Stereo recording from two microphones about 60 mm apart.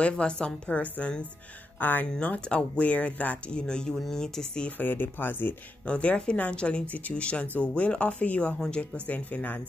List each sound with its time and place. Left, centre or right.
0.0 s speech: centre
4.6 s speech: left
5.9 s speech: left